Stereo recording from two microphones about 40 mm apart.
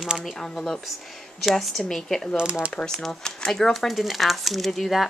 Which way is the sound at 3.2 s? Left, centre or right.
Centre.